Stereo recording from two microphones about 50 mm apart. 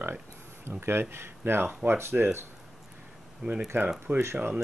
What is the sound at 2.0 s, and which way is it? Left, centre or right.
Speech, right.